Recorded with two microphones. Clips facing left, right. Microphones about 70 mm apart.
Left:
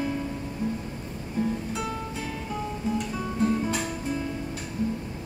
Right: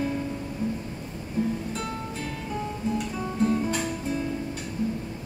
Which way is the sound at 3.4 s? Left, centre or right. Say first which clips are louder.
Right 1 dB; centre.